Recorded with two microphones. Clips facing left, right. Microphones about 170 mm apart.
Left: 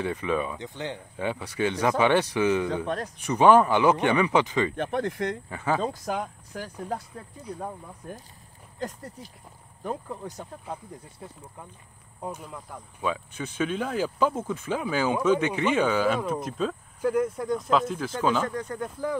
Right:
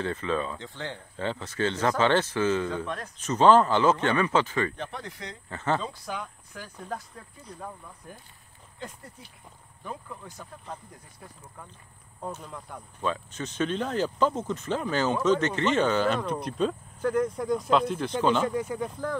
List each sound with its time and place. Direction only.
0.0 s speech: 15° left (ahead or behind)
4.7 s speech: 55° left (ahead or behind)
5.5 s speech: 10° left (ahead or behind)
5.8 s speech: 45° left (ahead or behind)
11.2 s speech: 15° left (ahead or behind)
18.4 s speech: 10° right (ahead or behind)